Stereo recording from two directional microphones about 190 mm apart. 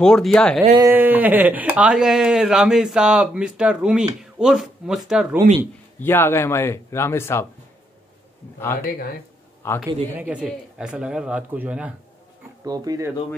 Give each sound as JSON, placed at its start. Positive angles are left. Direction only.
{"t": 0.0, "sound": "speech", "side_deg": 5}
{"t": 0.7, "sound": "speech", "side_deg": -15}
{"t": 5.9, "sound": "speech", "side_deg": 10}
{"t": 9.6, "sound": "speech", "side_deg": 15}
{"t": 10.1, "sound": "speech", "side_deg": -5}
{"t": 12.6, "sound": "speech", "side_deg": -20}